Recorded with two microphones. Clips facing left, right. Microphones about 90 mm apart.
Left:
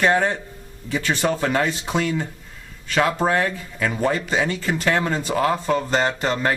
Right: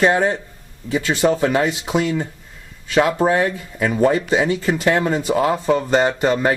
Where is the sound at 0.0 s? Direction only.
15° right (ahead or behind).